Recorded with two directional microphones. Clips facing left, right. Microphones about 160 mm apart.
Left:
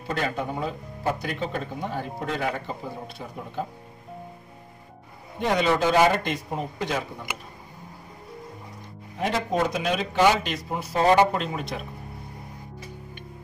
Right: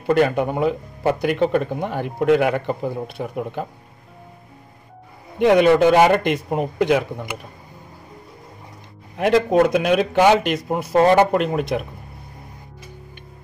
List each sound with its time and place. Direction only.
0.0 s speech: 65° right (ahead or behind)
5.4 s speech: 65° right (ahead or behind)
9.2 s speech: 65° right (ahead or behind)